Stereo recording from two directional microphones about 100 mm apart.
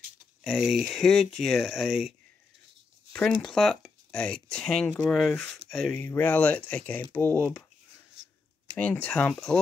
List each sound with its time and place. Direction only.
0.4 s speech: 5° right (ahead or behind)
3.1 s a sound: 10° left (ahead or behind)
3.4 s speech: centre (ahead or behind)
5.9 s speech: 20° left (ahead or behind)
7.3 s speech: 5° left (ahead or behind)
8.7 s speech: 15° left (ahead or behind)